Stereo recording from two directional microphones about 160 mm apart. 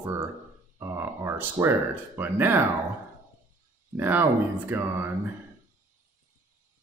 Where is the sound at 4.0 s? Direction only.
15° right (ahead or behind).